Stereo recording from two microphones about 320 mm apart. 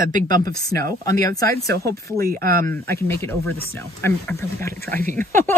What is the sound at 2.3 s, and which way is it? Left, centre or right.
Speech, right.